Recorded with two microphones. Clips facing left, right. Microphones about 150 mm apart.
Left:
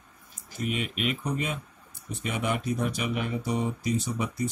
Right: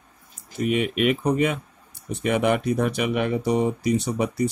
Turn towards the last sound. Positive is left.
turn(degrees=-70)  # may be behind; listen again after turning